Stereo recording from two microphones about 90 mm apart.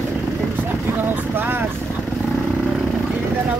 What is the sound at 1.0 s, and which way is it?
Speech, 20° right (ahead or behind).